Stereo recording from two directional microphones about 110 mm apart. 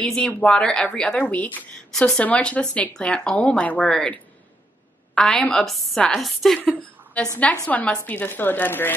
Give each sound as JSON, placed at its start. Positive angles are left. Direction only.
{"t": 0.0, "sound": "a woman's voice", "side_deg": 5}
{"t": 6.6, "sound": "a woman's voice", "side_deg": 15}